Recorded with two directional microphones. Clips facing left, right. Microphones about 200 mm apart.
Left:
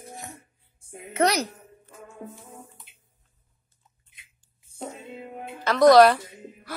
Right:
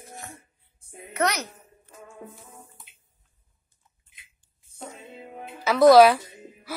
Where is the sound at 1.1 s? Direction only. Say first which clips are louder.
Left 3 dB; 30° left (ahead or behind).